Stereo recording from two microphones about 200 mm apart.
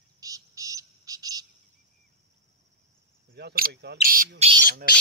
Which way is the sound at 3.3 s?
50° right (ahead or behind).